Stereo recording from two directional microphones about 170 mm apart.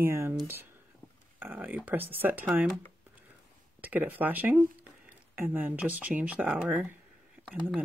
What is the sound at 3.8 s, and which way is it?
Speech, 10° right (ahead or behind).